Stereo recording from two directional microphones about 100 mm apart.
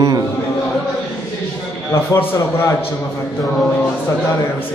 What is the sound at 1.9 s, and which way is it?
Speech, 25° left (ahead or behind).